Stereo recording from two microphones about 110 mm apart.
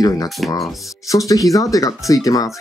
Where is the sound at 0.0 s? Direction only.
35° left (ahead or behind).